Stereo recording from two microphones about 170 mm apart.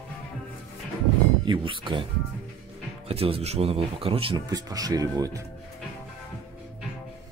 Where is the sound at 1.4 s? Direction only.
30° right (ahead or behind).